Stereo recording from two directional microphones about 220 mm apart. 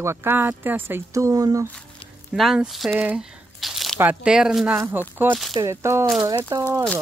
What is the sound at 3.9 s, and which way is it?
Speech, 5° right (ahead or behind).